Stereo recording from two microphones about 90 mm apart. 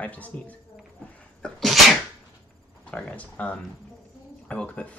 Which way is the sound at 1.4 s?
5° left (ahead or behind).